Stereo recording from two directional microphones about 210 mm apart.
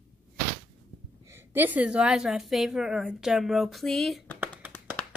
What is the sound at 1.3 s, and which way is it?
Speech, 10° right (ahead or behind).